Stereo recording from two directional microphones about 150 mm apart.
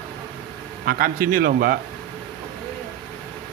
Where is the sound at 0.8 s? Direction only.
80° right.